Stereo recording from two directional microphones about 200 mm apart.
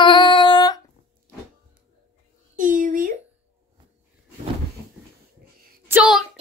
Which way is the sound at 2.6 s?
45° right (ahead or behind).